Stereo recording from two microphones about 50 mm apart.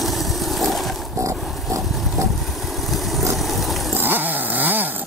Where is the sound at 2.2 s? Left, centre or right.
Right.